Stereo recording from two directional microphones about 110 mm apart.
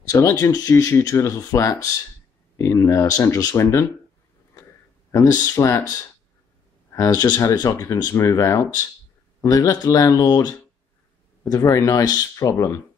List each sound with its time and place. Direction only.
0.1 s speech: 25° left (ahead or behind)
5.1 s speech: 30° left (ahead or behind)